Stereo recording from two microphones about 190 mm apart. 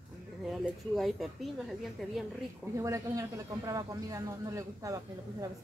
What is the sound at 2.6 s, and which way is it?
Speech, 15° right (ahead or behind).